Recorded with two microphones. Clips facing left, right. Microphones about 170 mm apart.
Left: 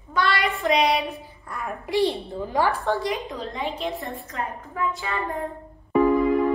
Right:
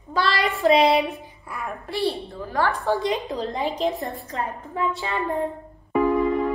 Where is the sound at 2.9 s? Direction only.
20° right (ahead or behind).